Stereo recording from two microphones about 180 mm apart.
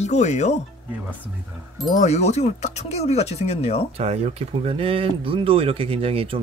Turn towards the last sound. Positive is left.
turn(degrees=-30)  # may be behind; listen again after turning